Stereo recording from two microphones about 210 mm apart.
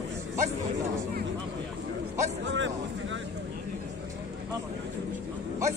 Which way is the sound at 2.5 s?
60° right (ahead or behind).